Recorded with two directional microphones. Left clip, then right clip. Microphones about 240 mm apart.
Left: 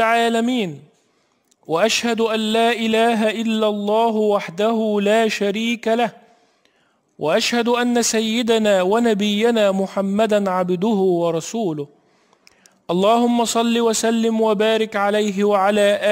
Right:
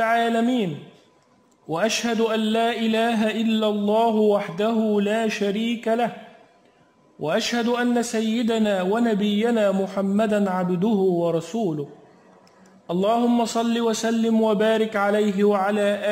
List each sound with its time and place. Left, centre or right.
0.0 s speech: left
1.7 s a man's voice: left
7.2 s a man's voice: left
12.8 s a man's voice: left